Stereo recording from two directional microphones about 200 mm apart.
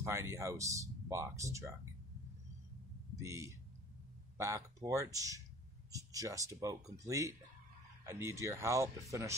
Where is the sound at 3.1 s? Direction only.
15° right (ahead or behind).